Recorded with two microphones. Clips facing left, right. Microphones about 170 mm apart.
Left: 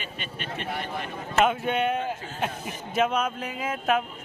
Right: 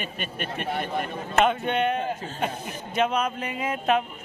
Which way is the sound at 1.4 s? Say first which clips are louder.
Right 1 dB; 5° left (ahead or behind).